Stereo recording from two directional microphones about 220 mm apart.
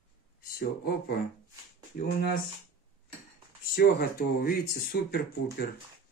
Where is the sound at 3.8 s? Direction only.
45° left (ahead or behind).